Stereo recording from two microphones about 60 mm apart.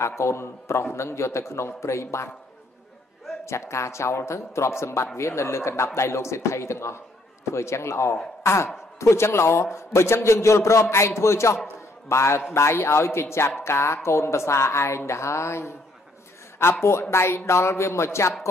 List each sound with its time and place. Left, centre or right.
0.2 s a man's voice: left
3.4 s a man's voice: left